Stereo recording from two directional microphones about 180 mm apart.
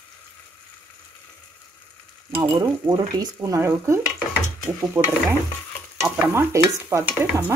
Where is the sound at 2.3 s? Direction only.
15° right (ahead or behind).